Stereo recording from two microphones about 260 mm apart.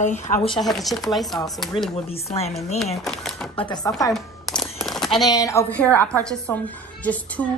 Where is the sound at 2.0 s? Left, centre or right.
Left.